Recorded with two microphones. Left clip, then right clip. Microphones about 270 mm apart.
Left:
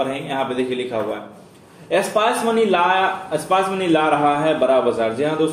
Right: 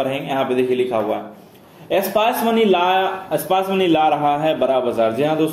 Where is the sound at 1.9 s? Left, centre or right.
Right.